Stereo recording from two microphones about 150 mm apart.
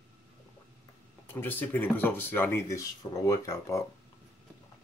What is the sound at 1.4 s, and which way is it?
Speech, 15° left (ahead or behind).